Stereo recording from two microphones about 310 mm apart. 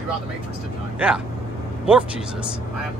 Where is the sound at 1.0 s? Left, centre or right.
Centre.